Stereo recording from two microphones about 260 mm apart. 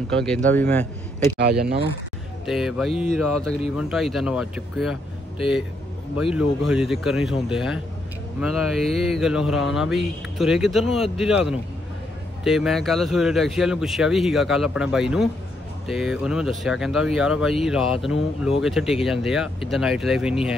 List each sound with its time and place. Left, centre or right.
0.1 s speech: centre
1.4 s speech: right
2.4 s speech: centre
6.3 s speech: centre